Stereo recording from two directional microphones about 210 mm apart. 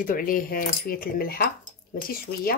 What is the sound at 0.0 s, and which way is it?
A woman's voice, 40° left (ahead or behind).